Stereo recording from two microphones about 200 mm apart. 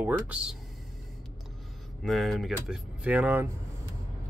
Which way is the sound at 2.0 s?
Centre (ahead or behind).